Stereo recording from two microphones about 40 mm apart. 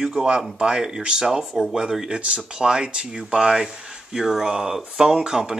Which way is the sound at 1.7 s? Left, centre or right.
Centre.